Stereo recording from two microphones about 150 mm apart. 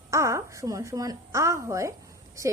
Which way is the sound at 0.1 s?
20° right (ahead or behind).